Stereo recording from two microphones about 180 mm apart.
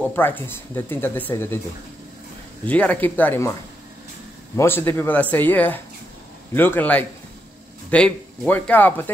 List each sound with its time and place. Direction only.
0.1 s speech: 10° left (ahead or behind)
2.6 s speech: 10° left (ahead or behind)
4.6 s speech: 10° left (ahead or behind)